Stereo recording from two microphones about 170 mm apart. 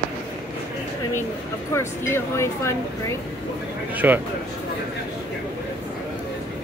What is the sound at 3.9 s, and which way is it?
Speech, 10° right (ahead or behind).